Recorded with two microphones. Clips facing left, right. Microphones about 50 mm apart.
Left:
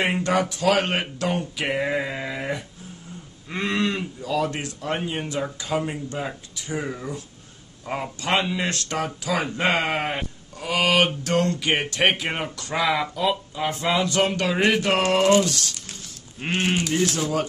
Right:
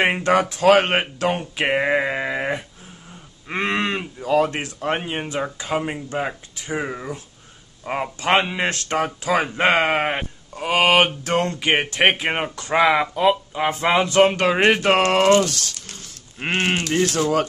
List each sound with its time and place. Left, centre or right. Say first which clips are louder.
0.0 s speech: right 4 dB; right
16.9 s speech: right 3 dB; right